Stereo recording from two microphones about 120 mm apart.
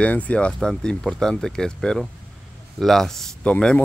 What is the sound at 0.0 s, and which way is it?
Speech, 10° left (ahead or behind).